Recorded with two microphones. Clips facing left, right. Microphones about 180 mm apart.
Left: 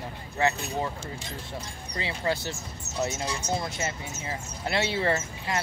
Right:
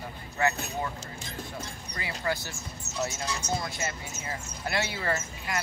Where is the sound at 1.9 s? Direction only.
25° left (ahead or behind).